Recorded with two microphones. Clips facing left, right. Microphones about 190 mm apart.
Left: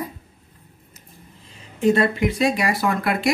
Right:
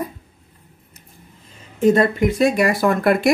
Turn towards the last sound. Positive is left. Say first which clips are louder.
# right 6 dB
turn(degrees=-50)  # may be behind; listen again after turning